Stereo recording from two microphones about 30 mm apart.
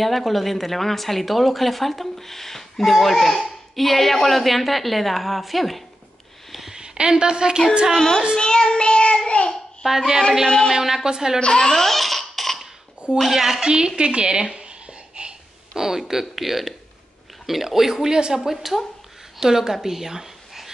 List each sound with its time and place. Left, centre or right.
0.0 s speech: centre
6.7 s a woman's voice: right
7.9 s a child's voice: centre
8.4 s child singing: left
9.8 s speech: centre
11.1 s a woman's voice: right
11.5 s speech: centre
12.0 s laughter: centre
13.3 s speech: centre
13.6 s a woman's voice: right
15.2 s a sound: right
15.7 s a woman's voice: centre
18.5 s speech: centre
19.4 s a woman's voice: centre